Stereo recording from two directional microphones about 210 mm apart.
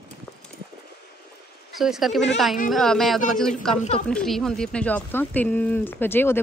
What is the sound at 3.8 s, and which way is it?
Speech, 35° left (ahead or behind).